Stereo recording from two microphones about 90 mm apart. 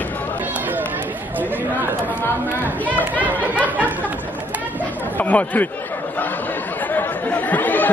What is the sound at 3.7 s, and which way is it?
Speech, 20° right (ahead or behind).